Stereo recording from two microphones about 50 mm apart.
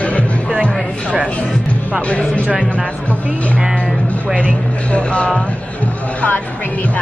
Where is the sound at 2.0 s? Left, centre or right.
Left.